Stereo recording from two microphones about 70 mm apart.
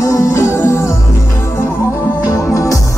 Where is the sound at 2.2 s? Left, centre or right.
Left.